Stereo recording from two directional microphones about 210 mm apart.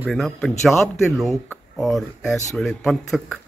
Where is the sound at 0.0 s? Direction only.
Centre (ahead or behind).